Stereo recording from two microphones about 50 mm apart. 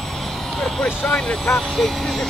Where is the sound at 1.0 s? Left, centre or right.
Centre.